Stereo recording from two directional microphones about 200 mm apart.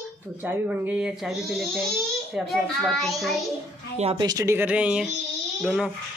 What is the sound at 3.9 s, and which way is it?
Speech, 30° right (ahead or behind).